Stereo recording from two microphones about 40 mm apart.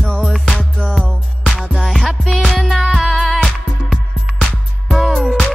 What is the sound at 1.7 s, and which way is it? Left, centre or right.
Music, centre.